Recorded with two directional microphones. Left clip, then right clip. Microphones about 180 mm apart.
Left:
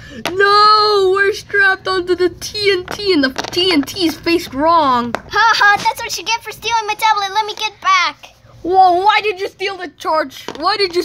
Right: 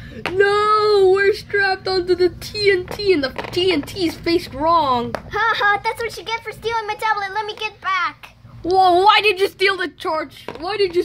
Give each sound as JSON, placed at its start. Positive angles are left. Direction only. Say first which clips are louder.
{"t": 0.4, "sound": "child singing", "louder": "left 6 dB", "side_deg": 20}
{"t": 3.0, "sound": "speech", "louder": "left 3 dB", "side_deg": 15}
{"t": 5.3, "sound": "speech", "louder": "left 6 dB", "side_deg": 55}
{"t": 8.6, "sound": "a woman's voice", "louder": "left 3 dB", "side_deg": 5}
{"t": 10.0, "sound": "speech", "louder": "left 8 dB", "side_deg": 25}
{"t": 10.4, "sound": "speech", "louder": "left 5 dB", "side_deg": 35}